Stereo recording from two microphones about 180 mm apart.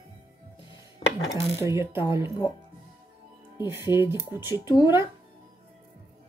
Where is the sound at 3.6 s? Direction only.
15° right (ahead or behind).